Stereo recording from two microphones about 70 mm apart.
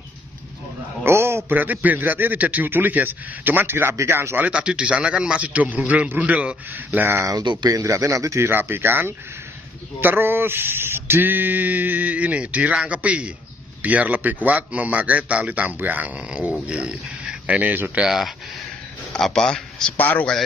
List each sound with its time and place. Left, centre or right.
1.0 s a sound: right
1.6 s a sound: right
4.1 s speech: right
4.4 s a man's voice: centre
5.9 s a sound: right
7.2 s speech: right
8.5 s speech: right
9.9 s a sound: right
16.6 s speech: centre
17.9 s a man's voice: centre
19.1 s speech: centre
20.0 s speech: left